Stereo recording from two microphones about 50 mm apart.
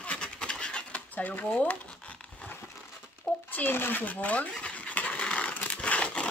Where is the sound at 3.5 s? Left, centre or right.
Left.